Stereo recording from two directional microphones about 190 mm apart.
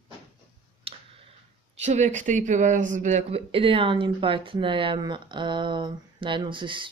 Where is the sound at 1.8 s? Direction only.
40° right (ahead or behind).